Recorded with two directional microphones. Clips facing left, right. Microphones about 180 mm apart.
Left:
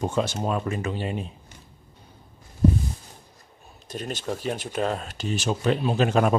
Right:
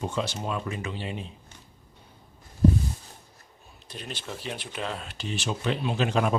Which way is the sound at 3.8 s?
45° left (ahead or behind).